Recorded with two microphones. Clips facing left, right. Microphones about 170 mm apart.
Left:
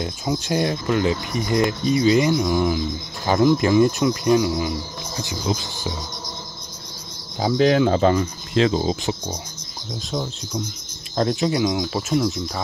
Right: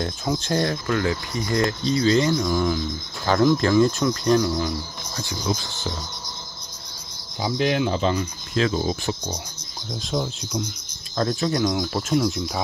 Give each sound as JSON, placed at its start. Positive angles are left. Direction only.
{"t": 0.0, "sound": "speech", "side_deg": 10}
{"t": 7.3, "sound": "speech", "side_deg": 45}
{"t": 7.9, "sound": "speech", "side_deg": 55}
{"t": 8.5, "sound": "speech", "side_deg": 30}
{"t": 10.1, "sound": "speech", "side_deg": 0}
{"t": 11.1, "sound": "speech", "side_deg": 15}
{"t": 11.6, "sound": "speech", "side_deg": 0}